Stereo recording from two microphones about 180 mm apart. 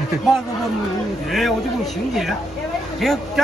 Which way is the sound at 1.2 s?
Centre (ahead or behind).